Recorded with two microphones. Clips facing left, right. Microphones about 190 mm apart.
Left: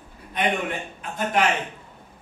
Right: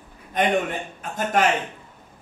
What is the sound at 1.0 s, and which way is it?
Speech, 45° right (ahead or behind).